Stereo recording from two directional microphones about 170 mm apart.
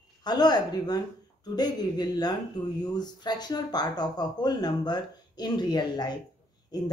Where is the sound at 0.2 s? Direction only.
25° left (ahead or behind).